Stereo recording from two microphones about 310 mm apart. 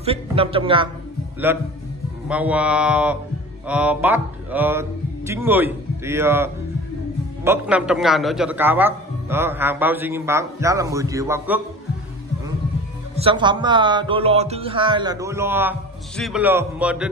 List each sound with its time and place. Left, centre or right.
0.0 s a man's voice: centre
13.1 s a man's voice: centre